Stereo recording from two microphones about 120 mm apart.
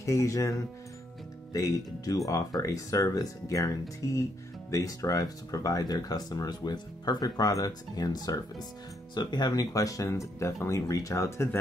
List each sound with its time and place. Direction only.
0.0 s speech: 25° left (ahead or behind)